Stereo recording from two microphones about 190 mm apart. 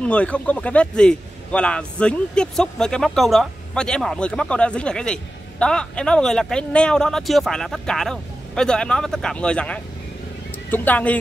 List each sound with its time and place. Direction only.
0.0 s speech: 5° left (ahead or behind)